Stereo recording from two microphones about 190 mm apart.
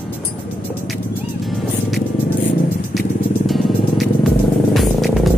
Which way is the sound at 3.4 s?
Centre (ahead or behind).